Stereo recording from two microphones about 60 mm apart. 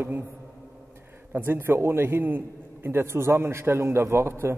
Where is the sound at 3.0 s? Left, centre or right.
Right.